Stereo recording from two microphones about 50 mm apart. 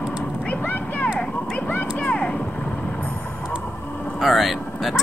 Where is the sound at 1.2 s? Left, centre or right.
Centre.